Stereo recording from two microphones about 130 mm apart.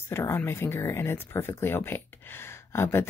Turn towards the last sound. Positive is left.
turn(degrees=20)  # may be behind; listen again after turning